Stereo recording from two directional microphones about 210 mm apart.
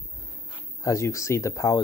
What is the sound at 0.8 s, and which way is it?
Speech, 15° left (ahead or behind).